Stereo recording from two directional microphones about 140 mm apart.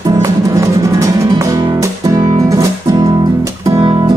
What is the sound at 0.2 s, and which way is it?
Music, 20° right (ahead or behind).